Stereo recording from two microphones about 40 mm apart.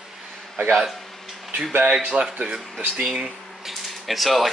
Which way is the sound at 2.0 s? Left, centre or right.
Right.